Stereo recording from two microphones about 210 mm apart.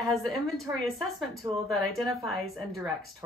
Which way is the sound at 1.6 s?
Centre (ahead or behind).